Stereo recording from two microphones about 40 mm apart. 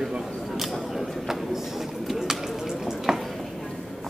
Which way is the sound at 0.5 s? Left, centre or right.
Centre.